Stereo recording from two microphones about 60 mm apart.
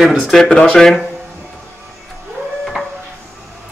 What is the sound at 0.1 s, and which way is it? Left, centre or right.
Speech, centre.